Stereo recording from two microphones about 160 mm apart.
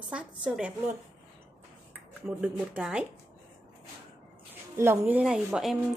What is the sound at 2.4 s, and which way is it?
Speech, 5° right (ahead or behind).